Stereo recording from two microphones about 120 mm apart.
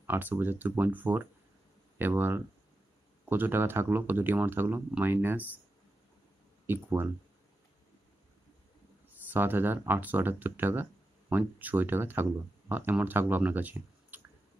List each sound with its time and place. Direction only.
0.0 s speech: 15° right (ahead or behind)
6.6 s speech: 20° right (ahead or behind)
9.3 s speech: 15° right (ahead or behind)